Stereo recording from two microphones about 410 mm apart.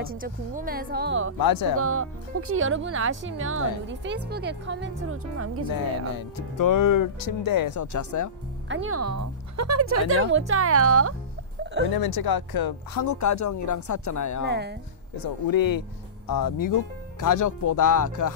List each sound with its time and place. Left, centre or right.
0.0 s speech: right
1.4 s speech: left
1.8 s speech: right
6.1 s speech: left
8.6 s a woman's voice: right
11.9 s speech: left
14.5 s speech: right
15.2 s speech: left